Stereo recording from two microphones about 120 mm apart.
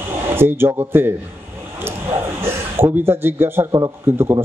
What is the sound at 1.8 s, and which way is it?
Speech, 20° right (ahead or behind).